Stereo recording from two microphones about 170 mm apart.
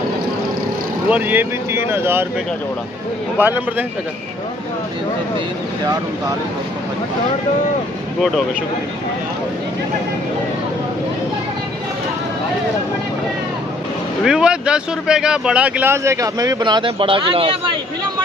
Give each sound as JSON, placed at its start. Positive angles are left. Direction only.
{"t": 1.0, "sound": "speech", "side_deg": -10}
{"t": 3.3, "sound": "speech", "side_deg": -10}
{"t": 14.2, "sound": "speech", "side_deg": -5}